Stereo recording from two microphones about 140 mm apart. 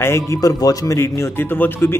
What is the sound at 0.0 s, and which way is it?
Speech, 20° left (ahead or behind).